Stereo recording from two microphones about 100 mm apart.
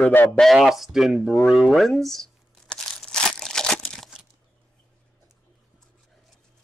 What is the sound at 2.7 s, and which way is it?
Crumpling, 5° left (ahead or behind).